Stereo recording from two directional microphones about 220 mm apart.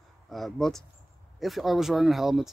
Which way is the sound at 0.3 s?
Centre (ahead or behind).